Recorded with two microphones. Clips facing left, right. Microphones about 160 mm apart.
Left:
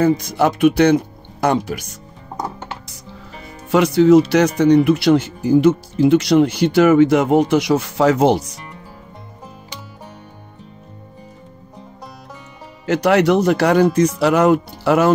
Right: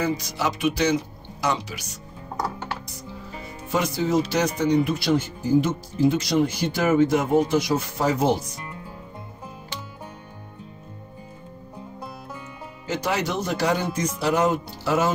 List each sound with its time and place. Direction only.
0.0 s speech: 55° left (ahead or behind)
2.3 s music: 20° left (ahead or behind)
3.7 s speech: 70° left (ahead or behind)
12.8 s speech: 70° left (ahead or behind)